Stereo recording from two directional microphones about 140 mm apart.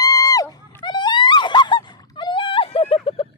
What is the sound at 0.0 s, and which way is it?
Goose, 25° left (ahead or behind).